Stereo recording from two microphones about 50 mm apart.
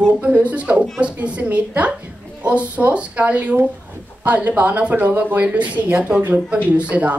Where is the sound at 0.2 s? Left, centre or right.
Right.